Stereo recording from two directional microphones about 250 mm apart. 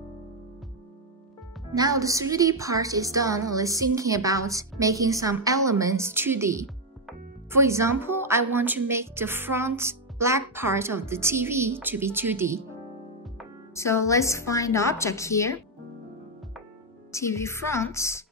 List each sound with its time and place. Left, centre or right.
1.8 s speech: centre
13.7 s a woman's voice: centre
17.1 s a woman's voice: centre